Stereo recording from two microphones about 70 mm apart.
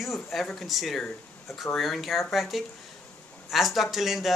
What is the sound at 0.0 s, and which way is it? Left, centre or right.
Speech, centre.